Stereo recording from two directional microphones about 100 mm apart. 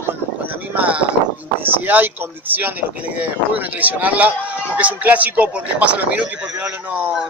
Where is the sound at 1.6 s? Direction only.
20° right (ahead or behind).